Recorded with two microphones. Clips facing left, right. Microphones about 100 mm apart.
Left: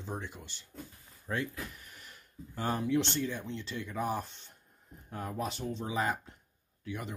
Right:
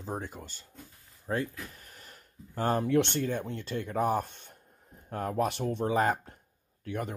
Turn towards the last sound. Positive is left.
turn(degrees=-50)  # may be behind; listen again after turning